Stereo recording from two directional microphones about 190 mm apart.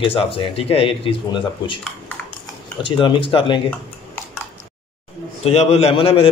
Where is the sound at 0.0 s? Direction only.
30° left (ahead or behind).